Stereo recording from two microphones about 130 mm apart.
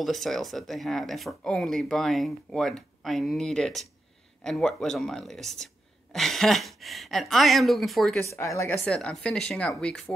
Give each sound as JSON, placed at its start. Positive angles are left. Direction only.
{"t": 0.0, "sound": "speech", "side_deg": 0}
{"t": 8.2, "sound": "speech", "side_deg": 20}
{"t": 8.8, "sound": "speech", "side_deg": 5}